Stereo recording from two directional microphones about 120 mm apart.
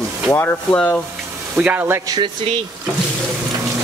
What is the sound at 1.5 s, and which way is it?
Speech, 15° right (ahead or behind).